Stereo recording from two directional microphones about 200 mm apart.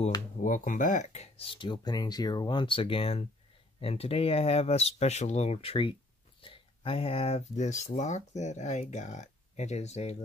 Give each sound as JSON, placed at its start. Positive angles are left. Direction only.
{"t": 0.4, "sound": "speech", "side_deg": 40}